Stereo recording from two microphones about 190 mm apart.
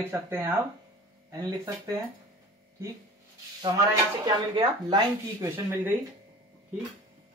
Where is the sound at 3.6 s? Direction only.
20° right (ahead or behind).